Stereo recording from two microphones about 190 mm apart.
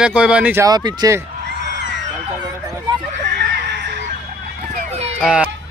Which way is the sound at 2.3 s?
20° right (ahead or behind).